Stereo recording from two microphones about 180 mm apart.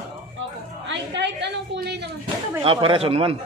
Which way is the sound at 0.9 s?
75° right (ahead or behind).